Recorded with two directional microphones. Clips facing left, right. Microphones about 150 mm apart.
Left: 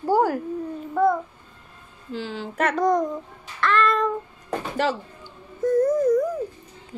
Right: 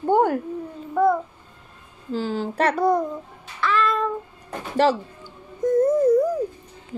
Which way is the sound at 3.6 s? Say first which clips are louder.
Left 1 dB; centre (ahead or behind).